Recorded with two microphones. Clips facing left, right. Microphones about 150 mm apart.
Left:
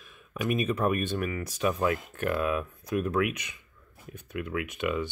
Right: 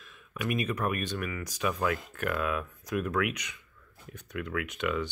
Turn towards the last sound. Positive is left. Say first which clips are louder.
# left 1 dB
turn(degrees=20)  # may be behind; listen again after turning